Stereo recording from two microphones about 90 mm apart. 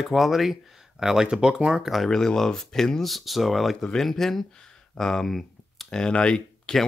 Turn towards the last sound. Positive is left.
turn(degrees=10)  # may be behind; listen again after turning